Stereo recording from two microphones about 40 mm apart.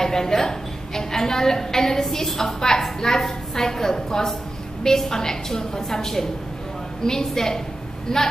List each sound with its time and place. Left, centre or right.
0.0 s a woman's voice: centre